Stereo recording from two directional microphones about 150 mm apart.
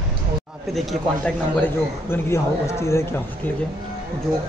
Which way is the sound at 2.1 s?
15° left (ahead or behind).